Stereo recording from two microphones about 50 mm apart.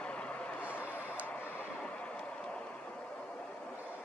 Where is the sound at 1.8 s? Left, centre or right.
Left.